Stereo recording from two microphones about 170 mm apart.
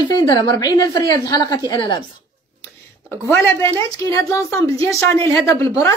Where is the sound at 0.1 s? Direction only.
25° left (ahead or behind).